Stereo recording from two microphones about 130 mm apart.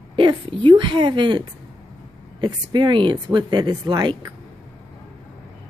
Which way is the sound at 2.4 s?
35° right (ahead or behind).